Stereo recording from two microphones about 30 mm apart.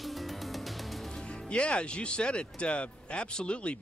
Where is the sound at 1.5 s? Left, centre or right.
Left.